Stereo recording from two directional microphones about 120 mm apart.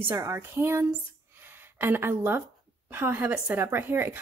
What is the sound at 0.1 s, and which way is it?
Speech, 25° right (ahead or behind).